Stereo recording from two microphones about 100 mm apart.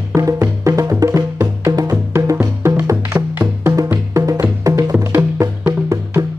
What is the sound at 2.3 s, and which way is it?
Music, 20° right (ahead or behind).